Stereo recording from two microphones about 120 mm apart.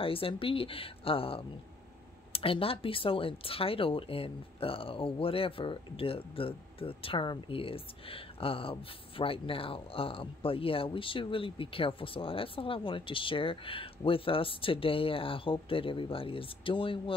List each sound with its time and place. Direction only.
0.0 s speech: 50° left (ahead or behind)